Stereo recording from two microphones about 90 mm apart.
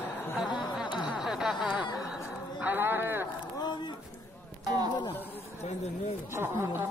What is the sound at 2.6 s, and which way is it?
Clip-clop, 20° right (ahead or behind).